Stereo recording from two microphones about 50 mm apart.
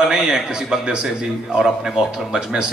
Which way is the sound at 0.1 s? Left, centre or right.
Centre.